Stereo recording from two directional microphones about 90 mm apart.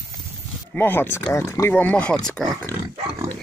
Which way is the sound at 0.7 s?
25° left (ahead or behind).